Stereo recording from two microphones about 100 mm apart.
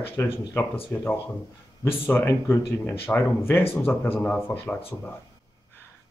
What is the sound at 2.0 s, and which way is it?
Speech, 25° left (ahead or behind).